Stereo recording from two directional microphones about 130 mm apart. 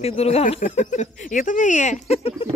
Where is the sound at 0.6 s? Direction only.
65° left (ahead or behind); by 2.4 s 50° left (ahead or behind).